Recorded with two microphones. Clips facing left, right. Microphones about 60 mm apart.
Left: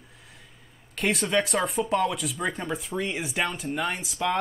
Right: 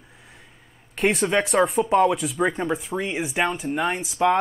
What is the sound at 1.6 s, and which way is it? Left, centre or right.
Speech, centre.